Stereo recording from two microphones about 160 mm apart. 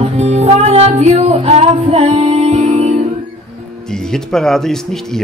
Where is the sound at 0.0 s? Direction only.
40° right (ahead or behind).